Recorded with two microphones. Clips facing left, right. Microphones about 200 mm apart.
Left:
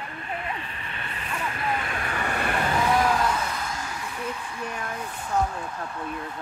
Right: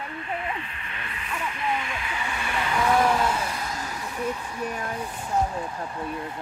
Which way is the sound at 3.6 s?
35° right (ahead or behind).